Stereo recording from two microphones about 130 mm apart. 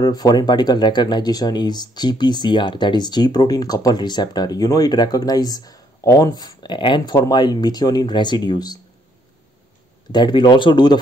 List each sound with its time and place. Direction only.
0.0 s speech: 30° left (ahead or behind)
10.1 s speech: 35° left (ahead or behind)